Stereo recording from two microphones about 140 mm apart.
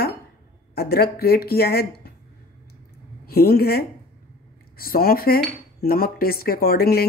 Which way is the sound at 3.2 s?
90° left.